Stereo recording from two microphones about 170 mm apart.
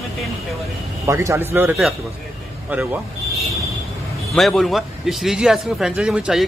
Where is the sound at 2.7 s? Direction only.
10° right (ahead or behind).